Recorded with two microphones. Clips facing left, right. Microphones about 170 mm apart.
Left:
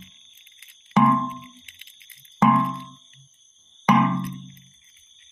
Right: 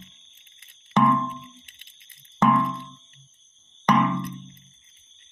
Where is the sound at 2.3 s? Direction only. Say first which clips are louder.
Left 1 dB; 5° left (ahead or behind).